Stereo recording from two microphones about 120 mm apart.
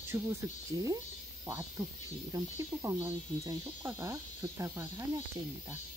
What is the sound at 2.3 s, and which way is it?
Speech, 25° right (ahead or behind).